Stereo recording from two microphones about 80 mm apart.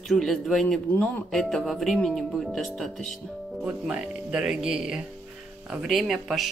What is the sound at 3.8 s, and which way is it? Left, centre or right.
Speech, centre.